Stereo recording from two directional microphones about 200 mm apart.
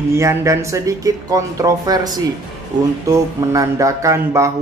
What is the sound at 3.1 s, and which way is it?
A man's voice, 15° right (ahead or behind).